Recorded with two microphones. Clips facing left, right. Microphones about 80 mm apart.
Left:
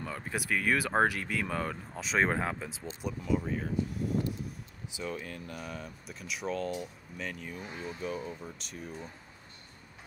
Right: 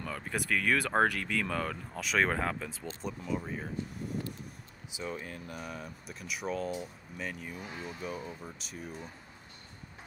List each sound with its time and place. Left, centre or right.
0.0 s speech: centre
2.0 s speech: left
2.2 s speech: centre
4.9 s speech: right
5.6 s speech: centre